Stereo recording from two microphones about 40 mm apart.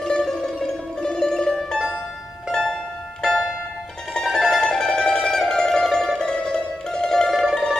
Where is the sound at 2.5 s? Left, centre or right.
Centre.